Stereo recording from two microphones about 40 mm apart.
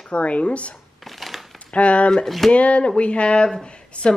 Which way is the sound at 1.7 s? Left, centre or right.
Left.